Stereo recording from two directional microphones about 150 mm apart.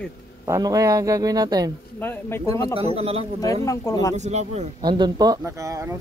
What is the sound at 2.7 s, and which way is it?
Speech, 40° right (ahead or behind).